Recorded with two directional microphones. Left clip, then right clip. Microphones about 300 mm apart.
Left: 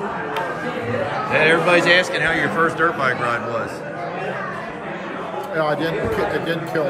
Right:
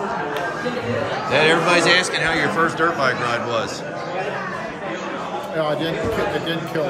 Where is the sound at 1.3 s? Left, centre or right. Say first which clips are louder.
Left 1 dB; centre.